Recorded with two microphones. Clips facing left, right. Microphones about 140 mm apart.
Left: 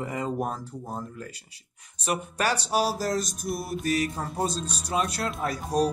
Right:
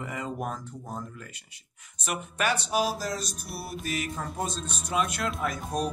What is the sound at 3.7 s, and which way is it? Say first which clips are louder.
Speech: left 5 dB; 40° left (ahead or behind).